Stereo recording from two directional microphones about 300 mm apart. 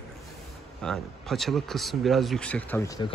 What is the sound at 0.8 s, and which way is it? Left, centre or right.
A man's voice, centre.